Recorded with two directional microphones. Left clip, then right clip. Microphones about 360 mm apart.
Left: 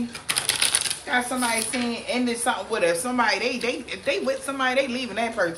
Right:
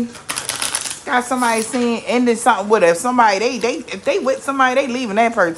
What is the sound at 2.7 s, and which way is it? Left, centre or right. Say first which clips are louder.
Speech: right 8 dB; centre.